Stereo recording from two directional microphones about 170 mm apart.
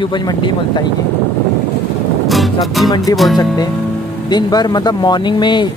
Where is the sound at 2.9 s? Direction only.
20° left (ahead or behind).